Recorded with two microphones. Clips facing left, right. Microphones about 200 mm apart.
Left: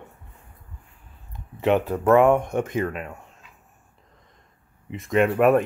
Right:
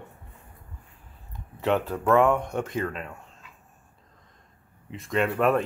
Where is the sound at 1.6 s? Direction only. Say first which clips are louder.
Left 4 dB; 15° left (ahead or behind).